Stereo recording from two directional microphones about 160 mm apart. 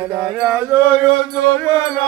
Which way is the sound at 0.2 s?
5° right (ahead or behind).